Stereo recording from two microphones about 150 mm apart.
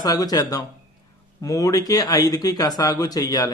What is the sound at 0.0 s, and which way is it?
A man's voice, 25° left (ahead or behind).